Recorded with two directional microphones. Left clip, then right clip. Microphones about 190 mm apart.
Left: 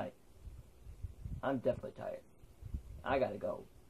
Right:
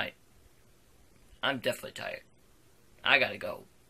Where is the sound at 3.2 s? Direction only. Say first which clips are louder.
Right 5 dB; 25° right (ahead or behind).